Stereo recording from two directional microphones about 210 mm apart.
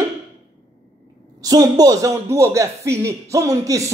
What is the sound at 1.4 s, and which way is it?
A man's voice, 20° right (ahead or behind).